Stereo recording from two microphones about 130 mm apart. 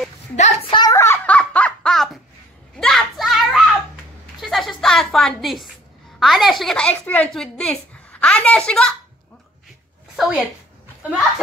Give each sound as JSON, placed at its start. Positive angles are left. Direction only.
{"t": 0.4, "sound": "a woman's voice", "side_deg": 50}
{"t": 0.7, "sound": "a sound", "side_deg": 25}
{"t": 1.2, "sound": "laughter", "side_deg": 10}
{"t": 2.8, "sound": "children playing", "side_deg": 0}
{"t": 4.4, "sound": "a sound", "side_deg": 0}
{"t": 6.1, "sound": "a woman's voice", "side_deg": 0}
{"t": 10.1, "sound": "a woman's voice", "side_deg": 0}